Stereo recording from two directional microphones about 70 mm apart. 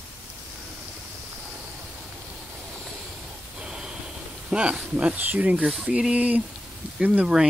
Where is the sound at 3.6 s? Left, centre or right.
Centre.